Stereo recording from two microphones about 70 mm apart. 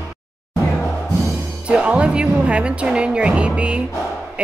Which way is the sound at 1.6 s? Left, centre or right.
Centre.